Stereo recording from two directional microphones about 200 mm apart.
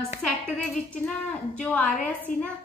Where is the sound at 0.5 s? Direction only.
5° left (ahead or behind).